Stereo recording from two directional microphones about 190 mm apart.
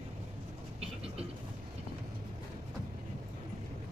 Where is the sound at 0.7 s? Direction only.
30° right (ahead or behind).